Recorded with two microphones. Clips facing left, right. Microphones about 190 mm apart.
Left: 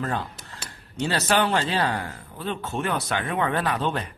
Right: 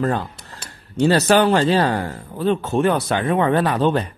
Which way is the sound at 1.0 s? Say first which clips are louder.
Right 8 dB; 40° right (ahead or behind).